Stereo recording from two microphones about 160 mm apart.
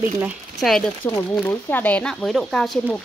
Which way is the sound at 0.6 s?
Centre (ahead or behind).